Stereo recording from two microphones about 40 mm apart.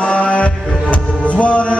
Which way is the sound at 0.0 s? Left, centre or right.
Left.